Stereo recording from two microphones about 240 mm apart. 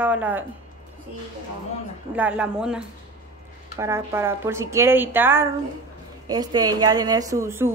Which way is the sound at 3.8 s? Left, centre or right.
Centre.